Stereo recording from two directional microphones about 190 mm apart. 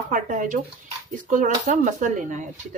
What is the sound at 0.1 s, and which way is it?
Speech, 45° right (ahead or behind).